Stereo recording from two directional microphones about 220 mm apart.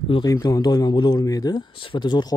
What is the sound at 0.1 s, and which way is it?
Speech, 15° left (ahead or behind).